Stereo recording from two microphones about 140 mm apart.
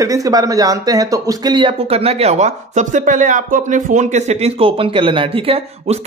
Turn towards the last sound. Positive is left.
turn(degrees=-45)  # may be behind; listen again after turning